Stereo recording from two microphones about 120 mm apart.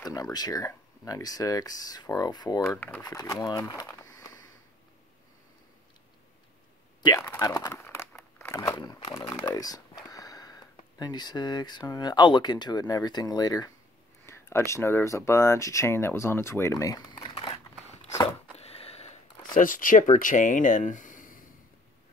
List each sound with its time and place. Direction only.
0.0 s speech: 30° left (ahead or behind)
4.0 s a sound: 30° left (ahead or behind)
7.2 s speech: 30° left (ahead or behind)
7.7 s a sound: 20° left (ahead or behind)
8.2 s crumpling: 25° left (ahead or behind)
8.7 s speech: 40° left (ahead or behind)
14.2 s speech: 20° left (ahead or behind); by 17.6 s 40° left (ahead or behind)
18.6 s a sound: 55° left (ahead or behind)
19.9 s speech: 90° left